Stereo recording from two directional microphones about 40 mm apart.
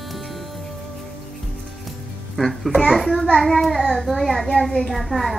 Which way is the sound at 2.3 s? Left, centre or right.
Centre.